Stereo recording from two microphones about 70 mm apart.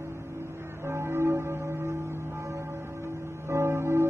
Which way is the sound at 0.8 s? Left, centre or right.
Right.